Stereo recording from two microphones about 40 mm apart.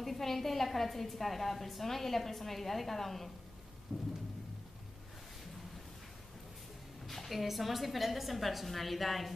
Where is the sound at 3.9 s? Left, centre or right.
Centre.